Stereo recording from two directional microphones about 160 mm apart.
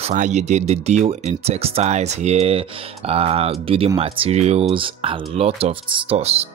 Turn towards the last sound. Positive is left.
turn(degrees=-40)  # may be behind; listen again after turning